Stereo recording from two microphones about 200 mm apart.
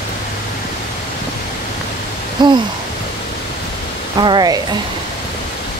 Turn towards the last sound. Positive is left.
turn(degrees=-20)  # may be behind; listen again after turning